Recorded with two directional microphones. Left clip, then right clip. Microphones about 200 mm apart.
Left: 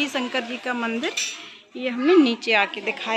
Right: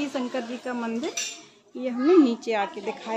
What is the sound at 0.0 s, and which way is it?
Speech, 10° left (ahead or behind).